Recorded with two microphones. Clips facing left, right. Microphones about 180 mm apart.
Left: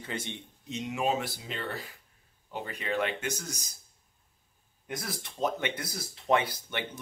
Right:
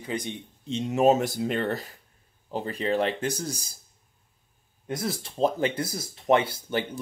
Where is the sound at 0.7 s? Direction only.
35° right (ahead or behind).